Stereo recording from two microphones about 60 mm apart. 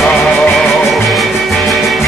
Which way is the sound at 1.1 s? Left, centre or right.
Centre.